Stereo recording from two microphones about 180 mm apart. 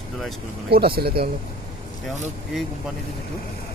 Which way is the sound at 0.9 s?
60° right (ahead or behind).